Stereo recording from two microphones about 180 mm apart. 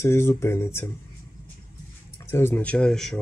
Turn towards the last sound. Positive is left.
turn(degrees=5)  # may be behind; listen again after turning